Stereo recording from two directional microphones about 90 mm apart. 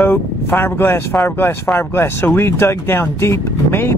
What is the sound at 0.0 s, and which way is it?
Speech, 25° left (ahead or behind).